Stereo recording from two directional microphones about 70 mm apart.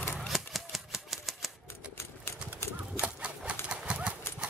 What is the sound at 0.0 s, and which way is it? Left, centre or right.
Typewriter, left.